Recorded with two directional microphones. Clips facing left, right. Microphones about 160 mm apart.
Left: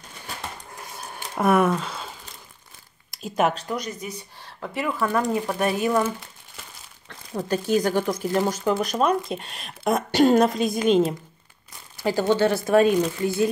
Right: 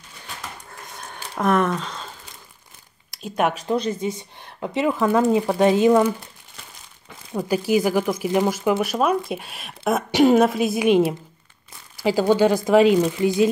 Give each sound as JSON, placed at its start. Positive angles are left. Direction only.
{"t": 0.8, "sound": "a sound", "side_deg": 5}
{"t": 1.4, "sound": "speech", "side_deg": 10}
{"t": 3.6, "sound": "speech", "side_deg": -30}
{"t": 12.0, "sound": "speech", "side_deg": -10}